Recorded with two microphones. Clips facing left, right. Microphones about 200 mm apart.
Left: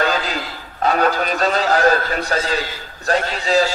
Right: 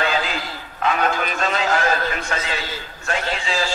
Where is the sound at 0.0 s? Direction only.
40° left (ahead or behind).